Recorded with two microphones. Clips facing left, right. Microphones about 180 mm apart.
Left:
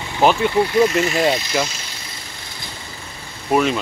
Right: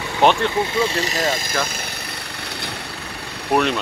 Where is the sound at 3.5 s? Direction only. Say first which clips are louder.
Left 1 dB; centre (ahead or behind).